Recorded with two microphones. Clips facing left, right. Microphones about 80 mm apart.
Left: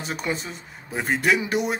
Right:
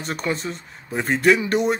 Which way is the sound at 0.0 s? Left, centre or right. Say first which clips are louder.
Right 3 dB; centre.